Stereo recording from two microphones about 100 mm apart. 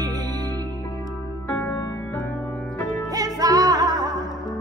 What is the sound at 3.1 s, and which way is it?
Music, 40° right (ahead or behind).